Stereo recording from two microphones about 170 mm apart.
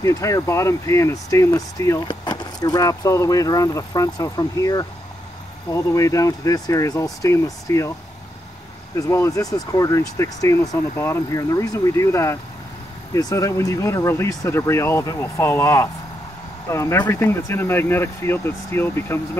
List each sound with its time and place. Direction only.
0.0 s speech: 20° left (ahead or behind)
8.9 s speech: 20° left (ahead or behind)